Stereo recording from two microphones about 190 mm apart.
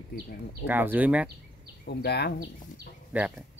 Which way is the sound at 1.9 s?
60° left (ahead or behind).